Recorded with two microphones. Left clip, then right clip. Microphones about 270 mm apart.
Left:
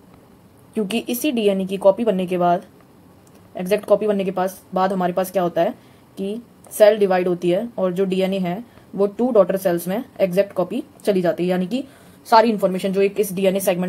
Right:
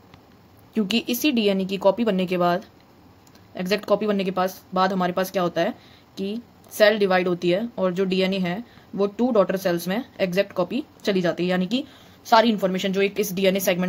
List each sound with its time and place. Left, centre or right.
0.7 s speech: right